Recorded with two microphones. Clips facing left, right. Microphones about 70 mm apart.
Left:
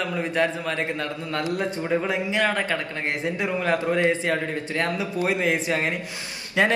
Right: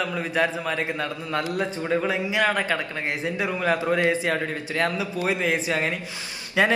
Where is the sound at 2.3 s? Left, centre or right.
Centre.